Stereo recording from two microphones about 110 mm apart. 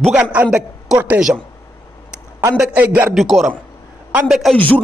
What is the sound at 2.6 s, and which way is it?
Speech, 15° right (ahead or behind).